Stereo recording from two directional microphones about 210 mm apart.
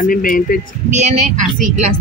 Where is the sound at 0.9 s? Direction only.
35° right (ahead or behind).